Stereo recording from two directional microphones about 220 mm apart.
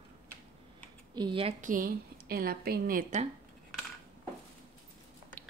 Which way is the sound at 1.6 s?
40° right (ahead or behind).